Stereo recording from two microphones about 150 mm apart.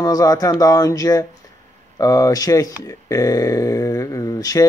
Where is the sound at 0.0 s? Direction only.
25° left (ahead or behind).